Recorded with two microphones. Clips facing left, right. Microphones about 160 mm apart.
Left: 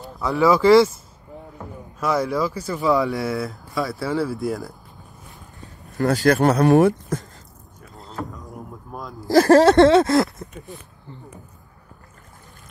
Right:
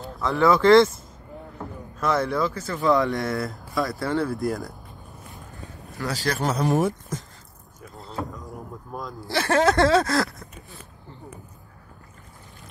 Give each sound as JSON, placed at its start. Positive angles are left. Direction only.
{"t": 0.0, "sound": "speech", "side_deg": 5}
{"t": 2.0, "sound": "speech", "side_deg": 10}
{"t": 5.9, "sound": "speech", "side_deg": 55}
{"t": 8.3, "sound": "a sound", "side_deg": 0}
{"t": 9.3, "sound": "speech", "side_deg": 40}
{"t": 9.8, "sound": "speech", "side_deg": 25}